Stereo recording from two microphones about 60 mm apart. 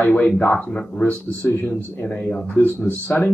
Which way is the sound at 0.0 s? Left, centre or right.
Left.